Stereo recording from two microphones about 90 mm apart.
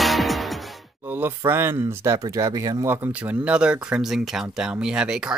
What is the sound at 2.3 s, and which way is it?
Speech, 40° right (ahead or behind).